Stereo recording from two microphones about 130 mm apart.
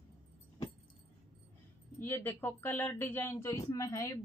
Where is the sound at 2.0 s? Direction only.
15° left (ahead or behind).